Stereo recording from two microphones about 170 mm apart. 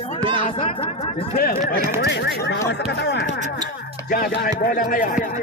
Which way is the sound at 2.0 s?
85° left.